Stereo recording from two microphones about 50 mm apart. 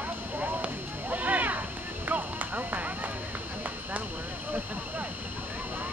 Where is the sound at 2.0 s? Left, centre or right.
Right.